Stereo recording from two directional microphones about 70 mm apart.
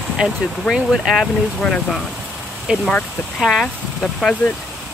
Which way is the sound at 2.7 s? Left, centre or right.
Centre.